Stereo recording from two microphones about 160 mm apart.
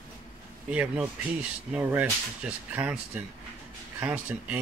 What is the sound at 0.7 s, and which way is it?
Speech, 5° right (ahead or behind).